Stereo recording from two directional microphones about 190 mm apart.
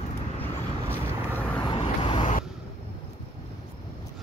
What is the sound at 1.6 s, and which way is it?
Vehicle, 25° left (ahead or behind).